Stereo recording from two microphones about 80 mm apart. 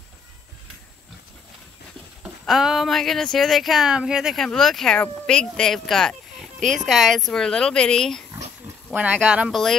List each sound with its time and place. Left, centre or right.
2.2 s speech: centre
4.4 s speech: centre
8.9 s speech: centre
9.5 s speech: centre